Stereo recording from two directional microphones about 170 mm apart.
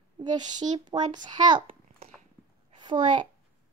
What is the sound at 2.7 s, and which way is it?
Speech, 30° right (ahead or behind).